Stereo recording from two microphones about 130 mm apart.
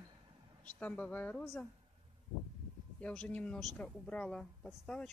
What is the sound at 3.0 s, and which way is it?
Speech, 10° left (ahead or behind).